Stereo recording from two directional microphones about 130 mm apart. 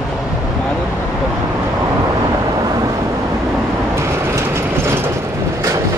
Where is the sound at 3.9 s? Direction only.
20° right (ahead or behind).